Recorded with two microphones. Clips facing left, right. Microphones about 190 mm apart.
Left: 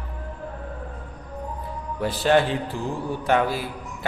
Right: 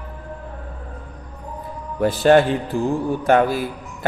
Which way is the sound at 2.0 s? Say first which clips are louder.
Right 6 dB; 50° right (ahead or behind).